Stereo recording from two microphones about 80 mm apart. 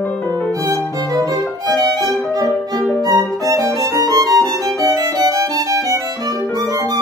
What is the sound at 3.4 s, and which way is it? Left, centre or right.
Music, right.